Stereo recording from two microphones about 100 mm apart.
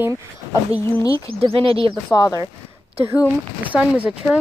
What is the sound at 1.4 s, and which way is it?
Speech, 70° right (ahead or behind).